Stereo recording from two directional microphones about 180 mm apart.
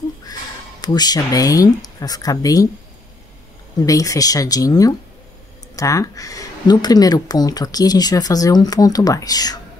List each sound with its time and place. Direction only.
0.2 s speech: 20° left (ahead or behind)
3.8 s speech: 20° left (ahead or behind)